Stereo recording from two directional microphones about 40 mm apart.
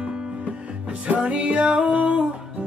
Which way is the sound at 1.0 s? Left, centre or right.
Right.